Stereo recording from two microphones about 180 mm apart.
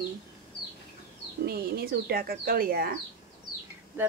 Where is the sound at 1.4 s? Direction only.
60° right (ahead or behind).